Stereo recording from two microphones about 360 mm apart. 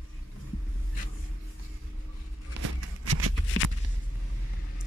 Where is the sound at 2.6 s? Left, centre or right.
Right.